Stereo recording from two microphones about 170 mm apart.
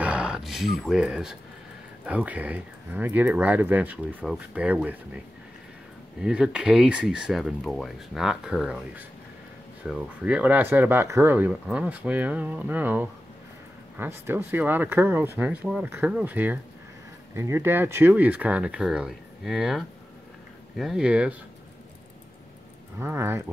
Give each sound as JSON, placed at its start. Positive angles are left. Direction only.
{"t": 0.0, "sound": "a sound", "side_deg": -5}
{"t": 2.0, "sound": "speech", "side_deg": -10}
{"t": 22.9, "sound": "speech", "side_deg": -15}